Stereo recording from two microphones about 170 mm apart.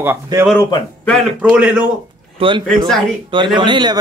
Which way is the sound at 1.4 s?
5° right (ahead or behind).